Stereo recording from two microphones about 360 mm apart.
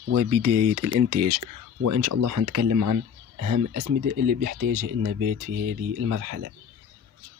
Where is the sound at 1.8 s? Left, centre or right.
Right.